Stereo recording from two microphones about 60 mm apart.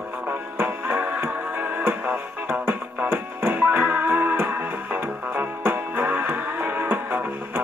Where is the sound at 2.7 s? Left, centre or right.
Right.